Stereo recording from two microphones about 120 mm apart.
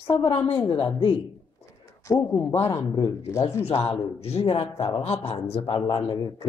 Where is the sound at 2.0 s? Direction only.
25° left (ahead or behind).